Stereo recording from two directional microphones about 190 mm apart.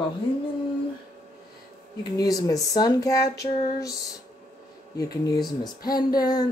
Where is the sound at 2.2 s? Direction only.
20° left (ahead or behind).